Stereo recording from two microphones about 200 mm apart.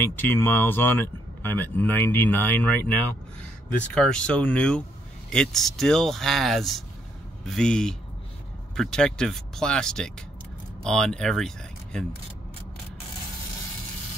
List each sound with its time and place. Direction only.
0.0 s speech: 10° left (ahead or behind)